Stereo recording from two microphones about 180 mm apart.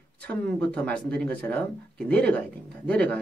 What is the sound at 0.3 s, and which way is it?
Speech, 5° left (ahead or behind).